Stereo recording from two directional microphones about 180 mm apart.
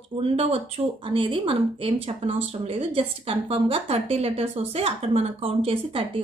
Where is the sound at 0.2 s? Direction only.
30° right (ahead or behind).